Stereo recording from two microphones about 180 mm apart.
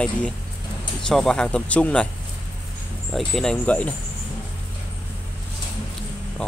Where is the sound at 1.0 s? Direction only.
5° left (ahead or behind).